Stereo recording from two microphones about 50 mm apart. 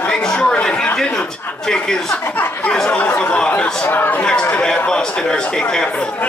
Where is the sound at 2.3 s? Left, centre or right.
Left.